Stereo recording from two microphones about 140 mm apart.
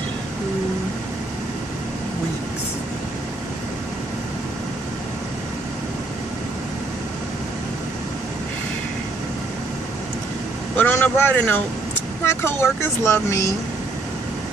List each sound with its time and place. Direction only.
10.8 s speech: 10° left (ahead or behind)